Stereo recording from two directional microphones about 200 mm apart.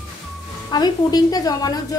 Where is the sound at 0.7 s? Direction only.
20° left (ahead or behind).